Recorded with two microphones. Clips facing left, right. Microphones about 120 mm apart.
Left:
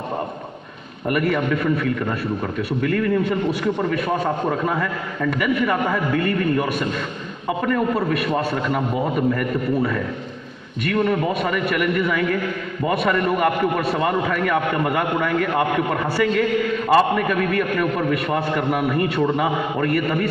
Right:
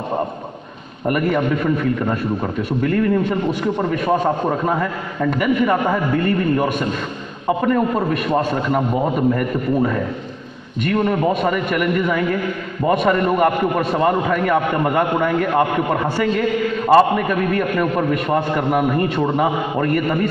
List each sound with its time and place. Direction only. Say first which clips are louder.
1.0 s a man's voice: right 2 dB; 25° right (ahead or behind)
2.8 s a man's voice: right 3 dB; 25° right (ahead or behind)
9.3 s a man's voice: right 2 dB; 25° right (ahead or behind)